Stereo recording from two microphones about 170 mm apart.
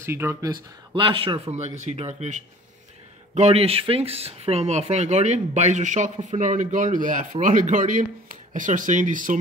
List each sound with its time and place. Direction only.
0.0 s speech: 15° right (ahead or behind)
0.9 s a man's voice: 30° right (ahead or behind); by 9.4 s 50° right (ahead or behind)